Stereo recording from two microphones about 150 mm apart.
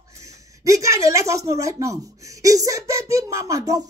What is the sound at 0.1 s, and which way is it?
A woman's voice, 20° right (ahead or behind).